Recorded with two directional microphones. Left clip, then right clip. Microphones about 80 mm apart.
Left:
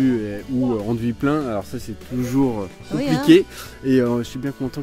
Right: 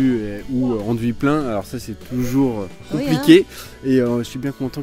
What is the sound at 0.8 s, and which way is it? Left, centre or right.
Speech, right.